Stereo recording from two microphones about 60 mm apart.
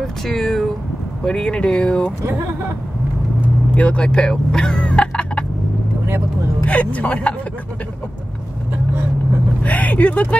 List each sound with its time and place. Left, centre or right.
0.0 s vehicle: centre
1.2 s speech: centre
3.7 s speech: left
6.6 s speech: left
9.6 s vehicle: left